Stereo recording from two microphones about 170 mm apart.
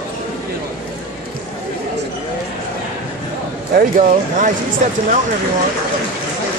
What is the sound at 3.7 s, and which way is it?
Speech, 50° right (ahead or behind).